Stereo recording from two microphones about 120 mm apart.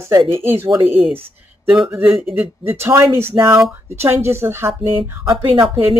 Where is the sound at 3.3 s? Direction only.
35° right (ahead or behind).